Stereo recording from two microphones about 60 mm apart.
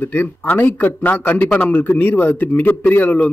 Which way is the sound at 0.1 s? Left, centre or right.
Left.